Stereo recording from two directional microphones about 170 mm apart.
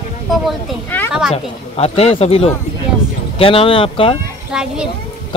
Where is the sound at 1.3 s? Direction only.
35° left (ahead or behind).